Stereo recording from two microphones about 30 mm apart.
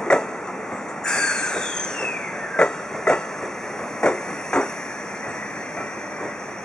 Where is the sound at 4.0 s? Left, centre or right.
Left.